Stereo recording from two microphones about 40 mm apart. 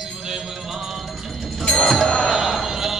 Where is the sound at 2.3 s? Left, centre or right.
Centre.